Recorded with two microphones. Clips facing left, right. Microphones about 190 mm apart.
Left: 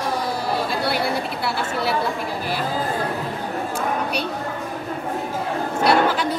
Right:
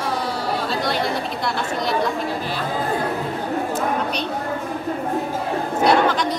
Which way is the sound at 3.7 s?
10° left (ahead or behind).